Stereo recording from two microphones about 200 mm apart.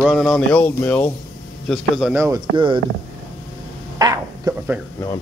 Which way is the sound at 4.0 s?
15° right (ahead or behind).